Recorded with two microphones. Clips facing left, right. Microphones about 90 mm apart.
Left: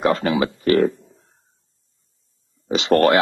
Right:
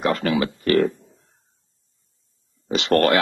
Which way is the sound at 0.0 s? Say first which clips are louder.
Left 2 dB; 25° left (ahead or behind).